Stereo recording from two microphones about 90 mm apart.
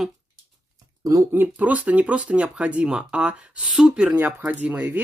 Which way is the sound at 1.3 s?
15° right (ahead or behind).